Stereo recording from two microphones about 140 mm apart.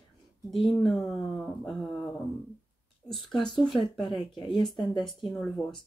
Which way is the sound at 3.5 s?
35° left (ahead or behind).